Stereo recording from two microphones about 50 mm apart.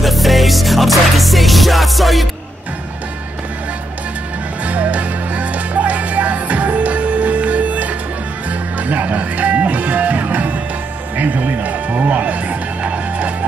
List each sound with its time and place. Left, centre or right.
0.0 s music: centre
4.6 s music: right